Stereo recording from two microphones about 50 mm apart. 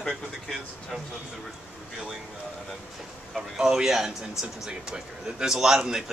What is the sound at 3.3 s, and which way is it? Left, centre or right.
A man's voice, centre.